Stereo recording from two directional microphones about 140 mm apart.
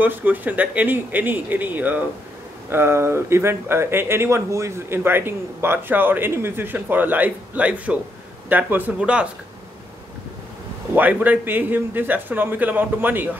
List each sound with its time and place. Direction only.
0.0 s speech: 15° right (ahead or behind)
11.0 s speech: 10° right (ahead or behind)